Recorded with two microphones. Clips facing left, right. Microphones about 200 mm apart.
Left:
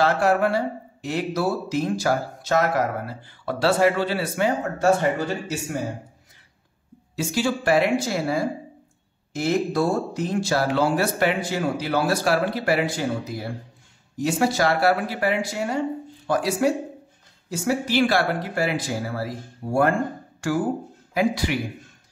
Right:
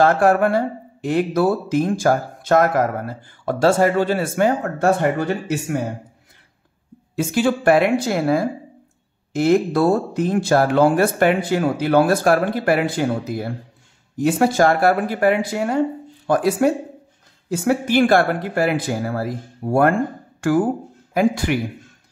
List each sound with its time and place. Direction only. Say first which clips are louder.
0.0 s speech: right 5 dB; 50° right (ahead or behind)
7.2 s speech: right 5 dB; 55° right (ahead or behind)